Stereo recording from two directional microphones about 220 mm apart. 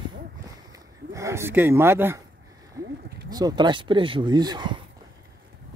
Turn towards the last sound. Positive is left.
turn(degrees=-20)  # may be behind; listen again after turning